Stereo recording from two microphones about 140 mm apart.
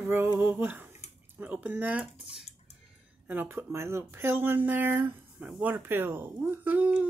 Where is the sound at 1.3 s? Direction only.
10° right (ahead or behind).